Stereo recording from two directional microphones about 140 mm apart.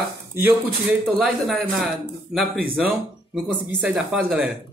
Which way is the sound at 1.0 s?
Centre (ahead or behind).